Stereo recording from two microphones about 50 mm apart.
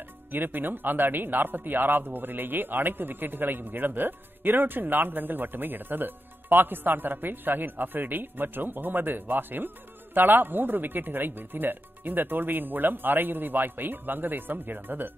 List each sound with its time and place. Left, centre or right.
0.3 s speech: right